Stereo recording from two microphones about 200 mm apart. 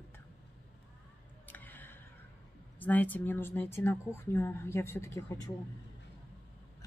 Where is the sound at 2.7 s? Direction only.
10° left (ahead or behind).